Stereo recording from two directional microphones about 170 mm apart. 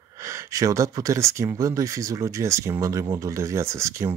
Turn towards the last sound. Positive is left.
turn(degrees=-15)  # may be behind; listen again after turning